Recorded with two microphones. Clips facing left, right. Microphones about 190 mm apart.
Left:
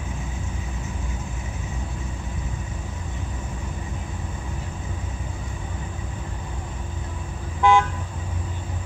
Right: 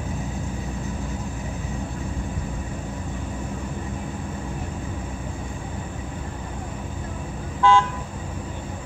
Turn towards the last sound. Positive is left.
turn(degrees=15)  # may be behind; listen again after turning